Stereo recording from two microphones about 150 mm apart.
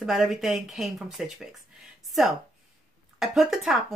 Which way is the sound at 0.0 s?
Centre (ahead or behind).